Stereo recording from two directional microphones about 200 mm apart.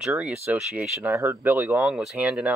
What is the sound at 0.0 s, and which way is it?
Speech, 5° right (ahead or behind).